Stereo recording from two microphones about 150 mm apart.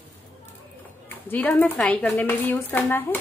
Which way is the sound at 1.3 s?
10° left (ahead or behind).